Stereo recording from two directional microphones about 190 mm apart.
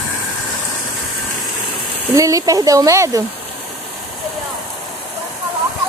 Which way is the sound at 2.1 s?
15° right (ahead or behind).